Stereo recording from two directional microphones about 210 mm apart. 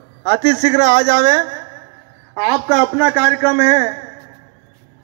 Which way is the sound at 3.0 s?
10° right (ahead or behind).